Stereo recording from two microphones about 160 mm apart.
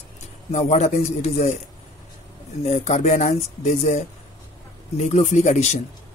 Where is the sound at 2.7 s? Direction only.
45° left (ahead or behind).